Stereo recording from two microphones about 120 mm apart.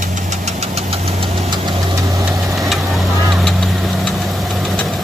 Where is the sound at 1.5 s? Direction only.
40° right (ahead or behind).